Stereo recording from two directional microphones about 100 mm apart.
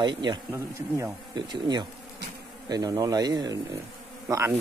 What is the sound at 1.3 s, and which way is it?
Speech, 45° right (ahead or behind).